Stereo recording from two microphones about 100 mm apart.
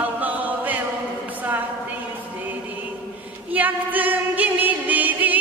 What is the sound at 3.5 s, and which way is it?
Music, 15° right (ahead or behind).